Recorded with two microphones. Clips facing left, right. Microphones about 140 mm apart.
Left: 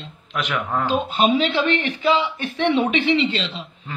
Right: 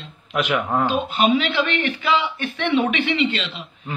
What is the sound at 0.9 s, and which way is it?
Speech, 35° left (ahead or behind).